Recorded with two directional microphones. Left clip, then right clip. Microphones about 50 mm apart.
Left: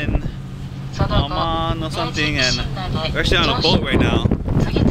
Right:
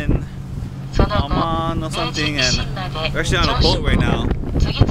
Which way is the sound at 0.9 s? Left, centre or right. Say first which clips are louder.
Right 2 dB; right.